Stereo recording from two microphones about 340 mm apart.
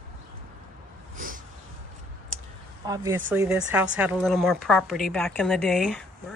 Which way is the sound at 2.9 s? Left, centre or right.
Centre.